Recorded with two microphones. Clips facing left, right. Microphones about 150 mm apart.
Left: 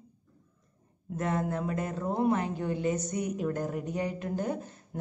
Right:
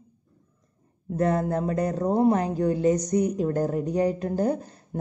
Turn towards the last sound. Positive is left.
turn(degrees=-35)  # may be behind; listen again after turning